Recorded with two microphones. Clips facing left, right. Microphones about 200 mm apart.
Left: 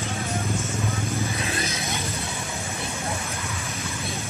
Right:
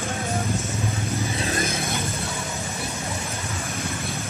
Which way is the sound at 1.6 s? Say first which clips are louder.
Right 4 dB; 50° right (ahead or behind).